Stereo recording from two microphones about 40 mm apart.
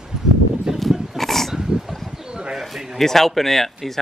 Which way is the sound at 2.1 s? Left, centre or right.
Centre.